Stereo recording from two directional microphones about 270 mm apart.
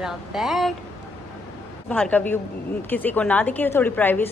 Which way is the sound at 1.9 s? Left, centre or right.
Centre.